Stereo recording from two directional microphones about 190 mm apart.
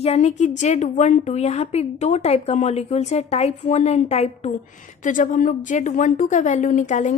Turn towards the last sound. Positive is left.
turn(degrees=40)  # may be behind; listen again after turning